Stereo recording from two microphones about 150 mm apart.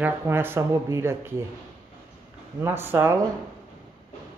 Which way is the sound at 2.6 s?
15° right (ahead or behind).